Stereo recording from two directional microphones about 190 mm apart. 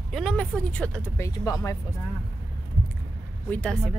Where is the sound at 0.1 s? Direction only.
5° left (ahead or behind).